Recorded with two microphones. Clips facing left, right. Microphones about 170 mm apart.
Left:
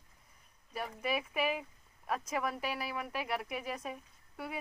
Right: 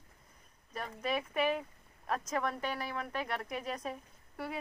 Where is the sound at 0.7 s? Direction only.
5° left (ahead or behind).